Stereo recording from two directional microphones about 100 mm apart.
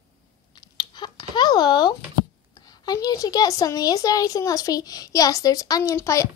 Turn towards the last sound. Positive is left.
turn(degrees=35)  # may be behind; listen again after turning